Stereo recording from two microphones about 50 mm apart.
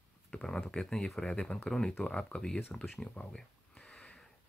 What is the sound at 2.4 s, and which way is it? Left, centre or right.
Speech, centre.